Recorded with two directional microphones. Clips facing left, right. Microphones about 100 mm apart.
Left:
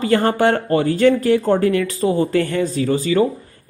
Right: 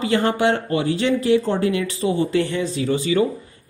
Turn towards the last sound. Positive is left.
turn(degrees=40)  # may be behind; listen again after turning